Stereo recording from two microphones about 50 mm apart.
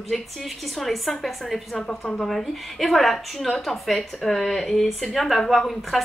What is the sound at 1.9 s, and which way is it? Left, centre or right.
Speech, centre.